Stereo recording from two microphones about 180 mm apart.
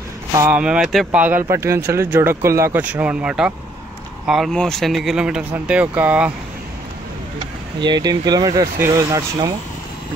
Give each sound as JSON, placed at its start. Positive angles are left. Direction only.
{"t": 0.5, "sound": "speech", "side_deg": -5}
{"t": 7.8, "sound": "speech", "side_deg": -25}